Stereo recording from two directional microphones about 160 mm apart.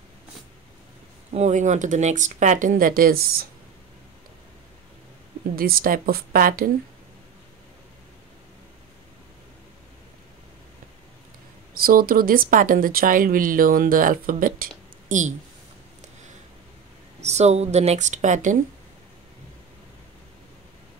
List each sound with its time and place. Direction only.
1.3 s speech: 45° right (ahead or behind); by 3.4 s 70° right (ahead or behind)
5.6 s a woman's voice: 65° right (ahead or behind)
11.8 s speech: 65° right (ahead or behind); by 15.3 s 50° right (ahead or behind)
17.2 s speech: 45° right (ahead or behind)